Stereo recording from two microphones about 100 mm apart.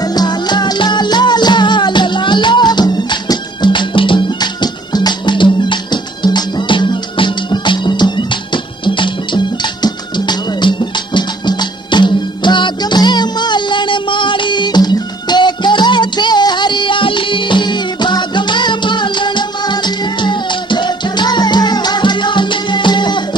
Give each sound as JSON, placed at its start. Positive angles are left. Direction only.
{"t": 0.0, "sound": "music", "side_deg": 40}